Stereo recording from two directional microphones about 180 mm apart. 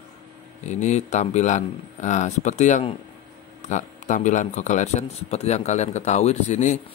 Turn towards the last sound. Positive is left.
turn(degrees=40)  # may be behind; listen again after turning